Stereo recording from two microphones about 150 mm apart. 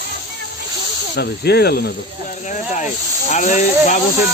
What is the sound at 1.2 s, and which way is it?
Speech, 90° left.